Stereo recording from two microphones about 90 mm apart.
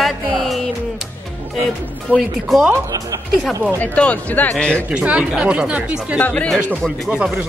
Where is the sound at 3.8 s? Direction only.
15° left (ahead or behind).